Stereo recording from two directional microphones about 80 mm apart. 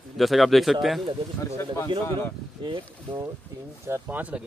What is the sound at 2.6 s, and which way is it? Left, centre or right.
Speech, right.